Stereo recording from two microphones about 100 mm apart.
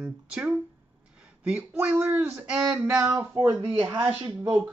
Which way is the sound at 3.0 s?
30° right (ahead or behind).